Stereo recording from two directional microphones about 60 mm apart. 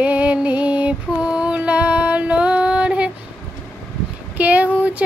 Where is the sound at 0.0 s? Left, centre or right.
Right.